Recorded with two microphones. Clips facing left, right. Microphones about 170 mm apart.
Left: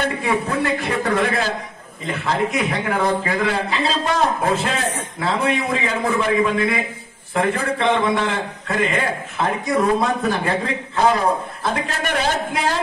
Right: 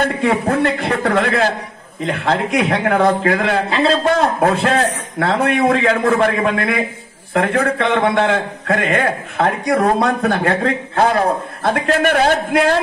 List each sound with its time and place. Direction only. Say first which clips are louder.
0.0 s a man's voice: right 5 dB; 60° right (ahead or behind)
2.0 s a man's voice: right 3 dB; 70° right (ahead or behind)